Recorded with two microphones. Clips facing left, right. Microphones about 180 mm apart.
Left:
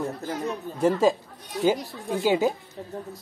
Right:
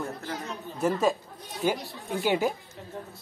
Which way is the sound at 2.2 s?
20° left (ahead or behind).